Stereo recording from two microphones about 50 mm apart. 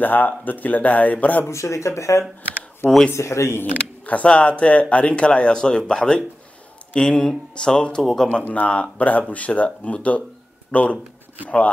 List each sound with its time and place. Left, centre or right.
0.0 s speech: left
1.5 s a man's voice: left
4.0 s speech: left
8.0 s speech: centre
8.3 s speech: left